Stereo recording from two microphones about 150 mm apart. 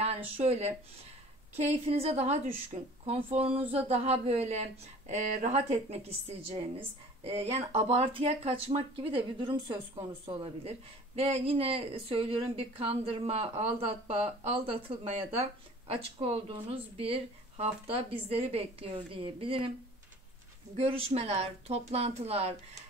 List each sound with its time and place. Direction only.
0.4 s speech: 45° right (ahead or behind)
20.7 s speech: 40° right (ahead or behind)